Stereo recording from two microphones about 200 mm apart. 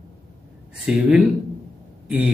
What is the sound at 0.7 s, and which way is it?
Speech, 5° right (ahead or behind).